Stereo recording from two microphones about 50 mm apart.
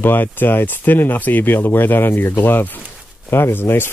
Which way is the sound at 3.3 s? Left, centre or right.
Left.